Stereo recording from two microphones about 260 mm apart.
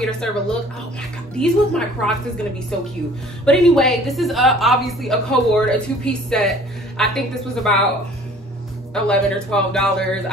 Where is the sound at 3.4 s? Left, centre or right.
Centre.